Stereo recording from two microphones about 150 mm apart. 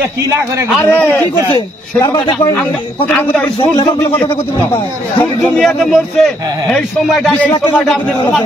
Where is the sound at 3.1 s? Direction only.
5° left (ahead or behind).